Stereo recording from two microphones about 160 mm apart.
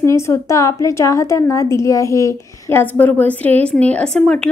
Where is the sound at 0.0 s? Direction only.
20° left (ahead or behind).